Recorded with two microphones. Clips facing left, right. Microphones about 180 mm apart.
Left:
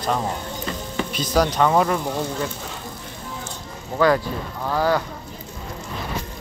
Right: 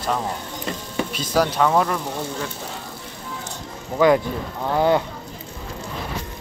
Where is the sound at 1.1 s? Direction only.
5° right (ahead or behind).